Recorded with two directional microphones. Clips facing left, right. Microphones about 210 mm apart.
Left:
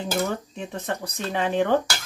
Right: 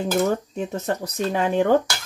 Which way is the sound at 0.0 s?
45° right (ahead or behind).